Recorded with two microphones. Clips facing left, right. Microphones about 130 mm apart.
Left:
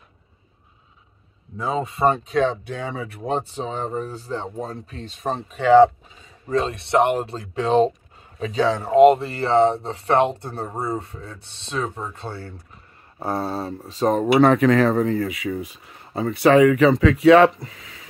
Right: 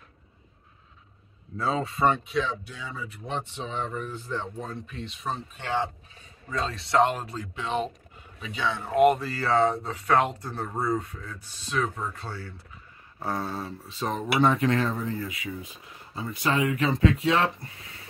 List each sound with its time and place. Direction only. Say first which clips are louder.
1.6 s speech: left 3 dB; 20° left (ahead or behind)
2.0 s speech: left 6 dB; 40° left (ahead or behind); by 3.3 s 65° left (ahead or behind)
3.3 s speech: left 8 dB; 40° left (ahead or behind)
5.5 s speech: left 19 dB; 90° left
6.5 s speech: left 6 dB; 25° left (ahead or behind); by 8.9 s 40° left (ahead or behind)
8.9 s speech: left 7 dB; 25° left (ahead or behind); by 14.4 s 45° left (ahead or behind)
14.4 s speech: left 6 dB; 85° left